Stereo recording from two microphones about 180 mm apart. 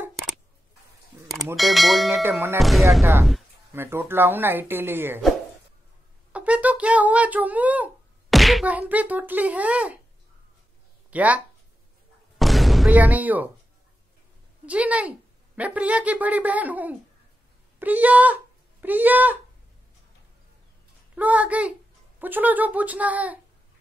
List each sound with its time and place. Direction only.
1.6 s speech: centre (ahead or behind)
2.2 s speech: 10° right (ahead or behind)
2.6 s speech: centre (ahead or behind)
3.0 s speech: 15° right (ahead or behind)
6.3 s speech: 5° right (ahead or behind)
11.1 s speech: 10° right (ahead or behind)
12.4 s a sound: centre (ahead or behind)
14.7 s speech: 5° right (ahead or behind)
21.1 s speech: 10° right (ahead or behind)